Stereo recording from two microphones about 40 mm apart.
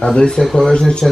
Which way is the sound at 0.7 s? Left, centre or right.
Left.